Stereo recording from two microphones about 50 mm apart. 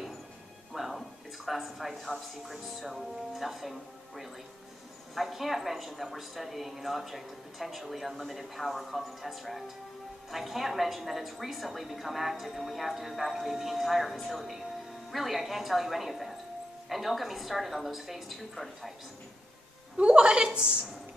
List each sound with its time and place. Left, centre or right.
0.7 s speech: centre
5.1 s a woman's voice: centre
20.0 s a woman's voice: right